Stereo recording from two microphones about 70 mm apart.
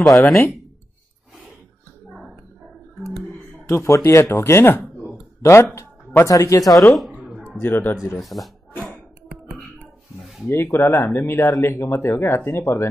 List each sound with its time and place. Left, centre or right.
0.0 s speech: centre
3.0 s a sound: centre
3.6 s speech: left
6.2 s speech: left
7.4 s speech: left
8.2 s a sound: centre
10.5 s speech: left